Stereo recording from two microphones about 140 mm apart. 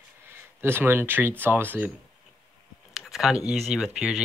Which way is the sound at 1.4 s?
15° right (ahead or behind).